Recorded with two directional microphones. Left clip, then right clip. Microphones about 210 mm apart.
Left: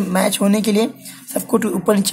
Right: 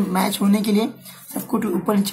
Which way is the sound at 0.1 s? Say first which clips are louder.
Left 6 dB; 35° left (ahead or behind).